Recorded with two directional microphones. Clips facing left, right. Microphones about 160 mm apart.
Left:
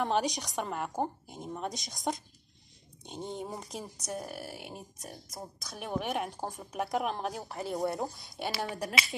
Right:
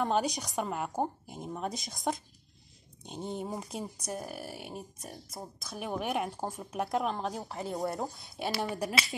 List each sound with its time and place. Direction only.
0.0 s speech: centre (ahead or behind)